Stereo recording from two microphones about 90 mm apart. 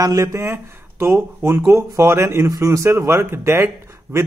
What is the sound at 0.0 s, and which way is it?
Speech, 40° right (ahead or behind).